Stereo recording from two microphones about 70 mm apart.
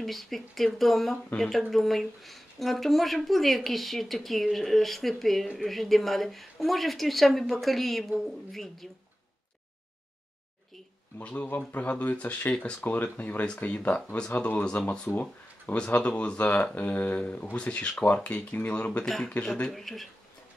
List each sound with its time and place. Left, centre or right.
0.0 s speech: centre
11.1 s speech: left; by 20.1 s centre